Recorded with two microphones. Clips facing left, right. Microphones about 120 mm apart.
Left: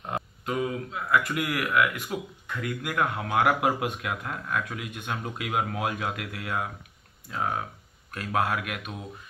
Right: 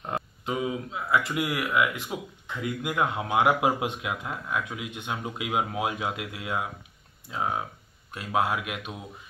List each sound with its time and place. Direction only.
0.5 s speech: 15° right (ahead or behind)